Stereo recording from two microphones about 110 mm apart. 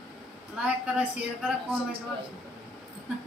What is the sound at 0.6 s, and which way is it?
Speech, 10° right (ahead or behind).